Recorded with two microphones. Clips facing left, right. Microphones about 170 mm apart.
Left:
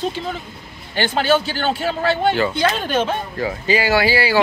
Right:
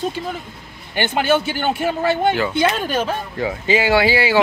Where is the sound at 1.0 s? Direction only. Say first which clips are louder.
Even; 15° right (ahead or behind).